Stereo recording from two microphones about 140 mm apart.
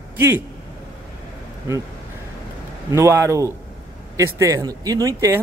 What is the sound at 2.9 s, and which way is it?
Speech, 20° right (ahead or behind).